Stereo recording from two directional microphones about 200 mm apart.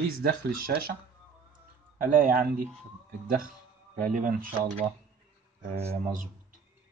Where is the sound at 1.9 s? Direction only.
40° right (ahead or behind).